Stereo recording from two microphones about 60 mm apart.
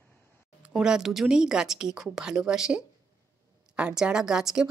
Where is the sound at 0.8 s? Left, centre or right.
Centre.